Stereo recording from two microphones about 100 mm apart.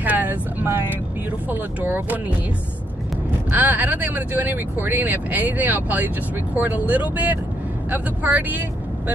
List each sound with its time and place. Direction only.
0.0 s vehicle: 15° right (ahead or behind)
1.5 s speech: 20° right (ahead or behind)
3.5 s speech: 15° right (ahead or behind)